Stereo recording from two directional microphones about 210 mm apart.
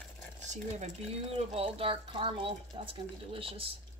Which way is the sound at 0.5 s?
30° right (ahead or behind).